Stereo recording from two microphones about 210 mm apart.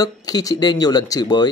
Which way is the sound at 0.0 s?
15° left (ahead or behind).